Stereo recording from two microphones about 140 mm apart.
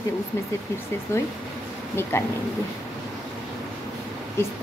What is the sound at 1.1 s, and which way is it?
Speech, 20° left (ahead or behind).